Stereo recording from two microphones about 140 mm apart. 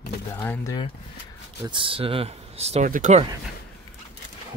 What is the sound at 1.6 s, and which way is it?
Speech, 35° right (ahead or behind).